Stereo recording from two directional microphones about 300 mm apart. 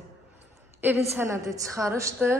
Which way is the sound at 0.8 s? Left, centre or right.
Centre.